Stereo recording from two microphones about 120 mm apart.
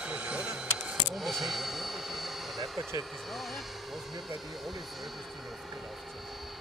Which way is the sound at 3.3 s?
Centre (ahead or behind).